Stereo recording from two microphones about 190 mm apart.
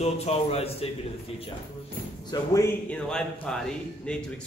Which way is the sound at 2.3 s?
15° left (ahead or behind).